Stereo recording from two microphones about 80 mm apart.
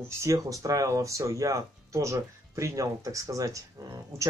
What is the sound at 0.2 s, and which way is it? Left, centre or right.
Speech, right.